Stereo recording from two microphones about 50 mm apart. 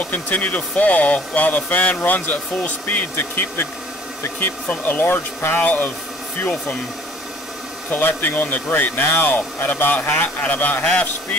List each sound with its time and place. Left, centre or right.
0.0 s speech: left
4.6 s speech: left
5.6 s speech: left
7.9 s speech: left